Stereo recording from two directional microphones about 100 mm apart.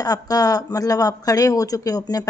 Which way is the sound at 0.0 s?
40° left (ahead or behind).